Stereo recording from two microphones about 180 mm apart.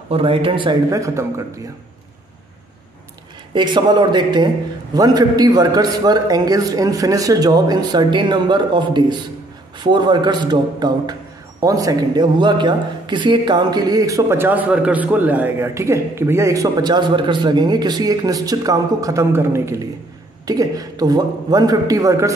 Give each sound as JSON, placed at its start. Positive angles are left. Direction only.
{"t": 0.1, "sound": "a man's voice", "side_deg": -30}
{"t": 3.5, "sound": "a man's voice", "side_deg": -25}